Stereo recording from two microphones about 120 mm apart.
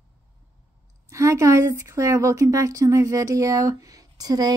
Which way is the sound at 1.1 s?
25° right (ahead or behind).